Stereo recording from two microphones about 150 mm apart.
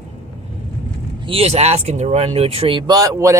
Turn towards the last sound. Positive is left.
turn(degrees=-20)  # may be behind; listen again after turning